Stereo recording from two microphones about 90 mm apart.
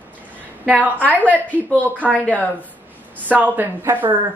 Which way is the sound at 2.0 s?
15° left (ahead or behind).